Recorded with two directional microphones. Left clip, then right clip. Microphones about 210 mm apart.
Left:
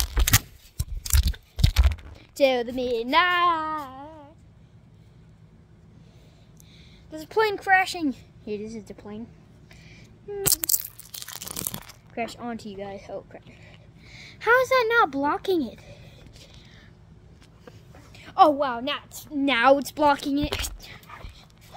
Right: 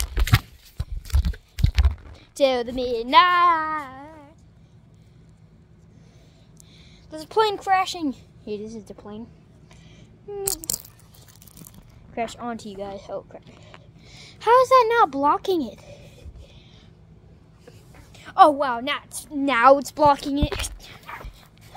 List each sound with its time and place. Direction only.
0.8 s a sound: centre (ahead or behind)
2.1 s speech: 5° right (ahead or behind)
3.8 s a sound: 25° right (ahead or behind)
7.1 s a woman's voice: 10° right (ahead or behind)
7.5 s speech: 10° left (ahead or behind)
8.5 s a woman's voice: 5° right (ahead or behind)
9.8 s a sound: 5° right (ahead or behind)
12.2 s speech: 10° right (ahead or behind)
18.1 s a woman's voice: 10° right (ahead or behind)
19.3 s speech: centre (ahead or behind)